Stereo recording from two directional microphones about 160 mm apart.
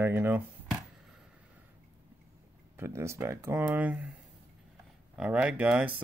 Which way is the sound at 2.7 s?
15° right (ahead or behind).